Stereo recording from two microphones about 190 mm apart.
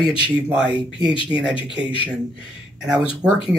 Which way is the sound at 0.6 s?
25° left (ahead or behind).